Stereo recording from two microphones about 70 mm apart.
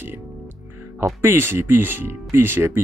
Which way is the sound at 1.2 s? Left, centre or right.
Right.